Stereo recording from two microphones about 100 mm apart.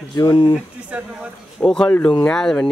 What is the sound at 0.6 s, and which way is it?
Speech, 10° right (ahead or behind).